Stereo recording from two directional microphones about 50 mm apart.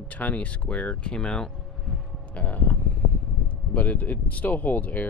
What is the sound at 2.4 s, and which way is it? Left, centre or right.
Speech, left.